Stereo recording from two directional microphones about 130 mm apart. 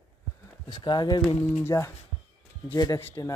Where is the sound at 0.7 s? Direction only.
35° left (ahead or behind).